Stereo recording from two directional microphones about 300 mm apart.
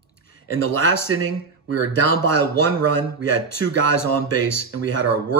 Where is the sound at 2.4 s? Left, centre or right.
Left.